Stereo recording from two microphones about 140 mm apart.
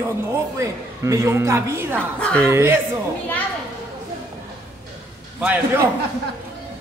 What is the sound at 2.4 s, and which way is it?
Speech, 20° right (ahead or behind).